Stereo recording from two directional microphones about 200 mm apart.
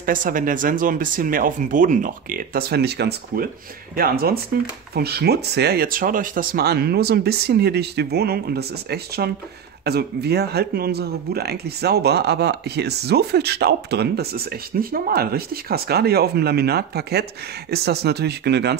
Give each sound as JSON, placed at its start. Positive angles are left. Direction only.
{"t": 0.0, "sound": "speech", "side_deg": -40}